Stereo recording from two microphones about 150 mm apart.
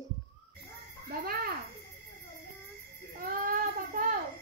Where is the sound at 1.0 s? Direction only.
85° right.